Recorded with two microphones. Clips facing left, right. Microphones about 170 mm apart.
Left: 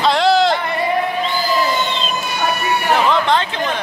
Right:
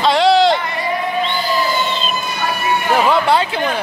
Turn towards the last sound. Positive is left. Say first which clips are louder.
# right 2 dB
turn(degrees=-10)  # may be behind; listen again after turning